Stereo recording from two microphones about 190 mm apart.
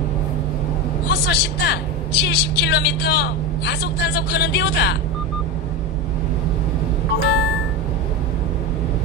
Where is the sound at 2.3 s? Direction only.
60° left (ahead or behind).